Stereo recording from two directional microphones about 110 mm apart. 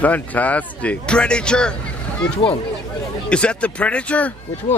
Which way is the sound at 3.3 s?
10° left (ahead or behind).